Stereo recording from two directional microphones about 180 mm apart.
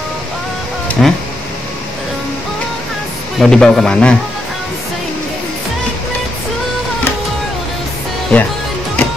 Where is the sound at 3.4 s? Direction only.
5° left (ahead or behind).